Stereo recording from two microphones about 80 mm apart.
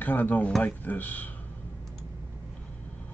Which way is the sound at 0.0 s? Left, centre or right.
Left.